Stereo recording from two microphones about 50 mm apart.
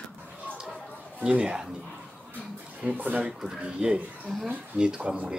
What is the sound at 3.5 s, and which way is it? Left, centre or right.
Speech, centre.